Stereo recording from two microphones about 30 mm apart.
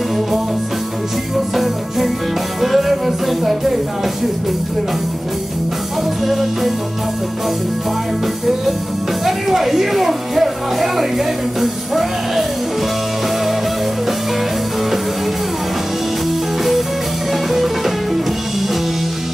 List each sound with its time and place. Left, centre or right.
1.5 s music: centre
6.2 s music: centre
9.2 s music: centre
17.3 s music: centre